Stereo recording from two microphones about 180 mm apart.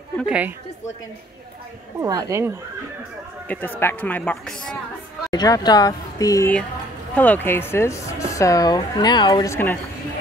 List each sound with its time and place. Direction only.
0.2 s a woman's voice: 10° right (ahead or behind)
2.0 s a woman's voice: 20° right (ahead or behind)
3.5 s speech: 10° left (ahead or behind)
5.3 s speech: 20° left (ahead or behind)